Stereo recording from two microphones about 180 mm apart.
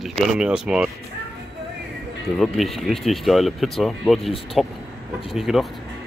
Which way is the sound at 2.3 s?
Centre (ahead or behind).